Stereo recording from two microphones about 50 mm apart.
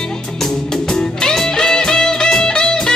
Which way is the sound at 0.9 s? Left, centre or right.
Centre.